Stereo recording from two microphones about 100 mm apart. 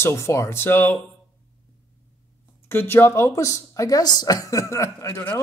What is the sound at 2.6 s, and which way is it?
Speech, 25° left (ahead or behind).